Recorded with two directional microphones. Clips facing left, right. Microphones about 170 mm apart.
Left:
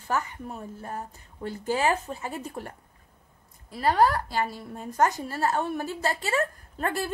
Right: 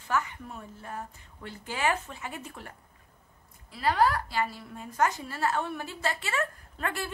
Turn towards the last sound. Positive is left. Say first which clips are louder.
# left 5 dB
turn(degrees=40)  # may be behind; listen again after turning